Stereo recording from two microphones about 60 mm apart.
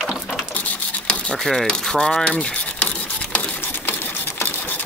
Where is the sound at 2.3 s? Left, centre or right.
Centre.